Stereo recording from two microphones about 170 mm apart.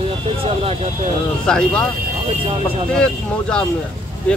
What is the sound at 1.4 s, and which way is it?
Speech, 5° left (ahead or behind).